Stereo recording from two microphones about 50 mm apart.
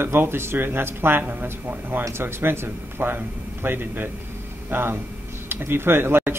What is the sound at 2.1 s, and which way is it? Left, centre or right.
Speech, right.